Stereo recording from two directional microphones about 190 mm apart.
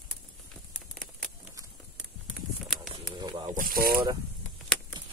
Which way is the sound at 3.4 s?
45° right (ahead or behind).